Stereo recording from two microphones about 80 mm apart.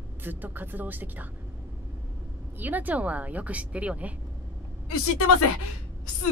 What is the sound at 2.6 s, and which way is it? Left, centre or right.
Speech, right.